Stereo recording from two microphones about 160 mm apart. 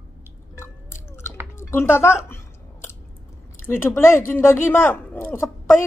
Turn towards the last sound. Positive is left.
turn(degrees=15)  # may be behind; listen again after turning